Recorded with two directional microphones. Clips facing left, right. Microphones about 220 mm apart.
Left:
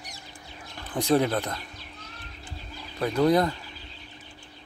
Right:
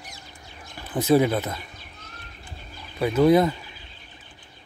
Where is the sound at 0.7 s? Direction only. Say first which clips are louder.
Right 4 dB; 5° right (ahead or behind).